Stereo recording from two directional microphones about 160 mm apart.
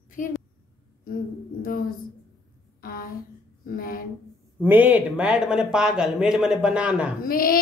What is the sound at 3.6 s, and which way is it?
Speech, 65° left (ahead or behind).